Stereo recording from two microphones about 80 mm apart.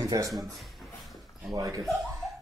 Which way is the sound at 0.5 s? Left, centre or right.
Centre.